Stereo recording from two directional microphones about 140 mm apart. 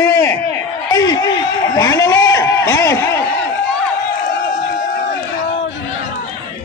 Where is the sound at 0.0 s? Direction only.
20° left (ahead or behind).